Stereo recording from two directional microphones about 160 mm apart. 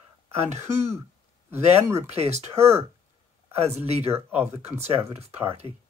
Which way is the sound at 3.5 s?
40° right (ahead or behind).